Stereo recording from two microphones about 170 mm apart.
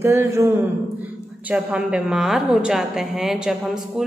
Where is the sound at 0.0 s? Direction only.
15° right (ahead or behind).